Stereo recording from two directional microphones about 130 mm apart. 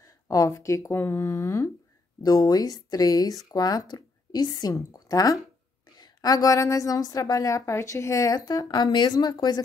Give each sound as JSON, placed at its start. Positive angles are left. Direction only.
{"t": 0.0, "sound": "a woman's voice", "side_deg": 25}